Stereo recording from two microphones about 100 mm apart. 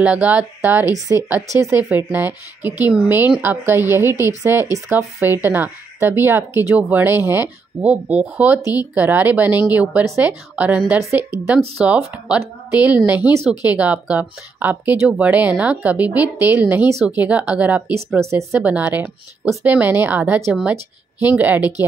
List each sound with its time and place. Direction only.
0.0 s speech: 15° right (ahead or behind); by 1.8 s 30° right (ahead or behind)
1.9 s speech: 20° right (ahead or behind)
11.0 s speech: 25° right (ahead or behind)
11.8 s speech: 10° right (ahead or behind)
18.2 s speech: 30° right (ahead or behind)
18.6 s speech: 15° right (ahead or behind)